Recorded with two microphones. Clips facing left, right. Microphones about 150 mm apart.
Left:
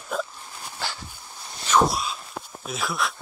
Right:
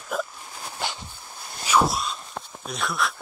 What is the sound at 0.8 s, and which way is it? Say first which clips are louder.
Dog: right 2 dB; 20° right (ahead or behind).